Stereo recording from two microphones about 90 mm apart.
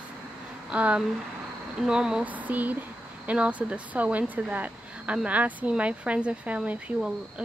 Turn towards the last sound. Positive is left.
turn(degrees=-10)  # may be behind; listen again after turning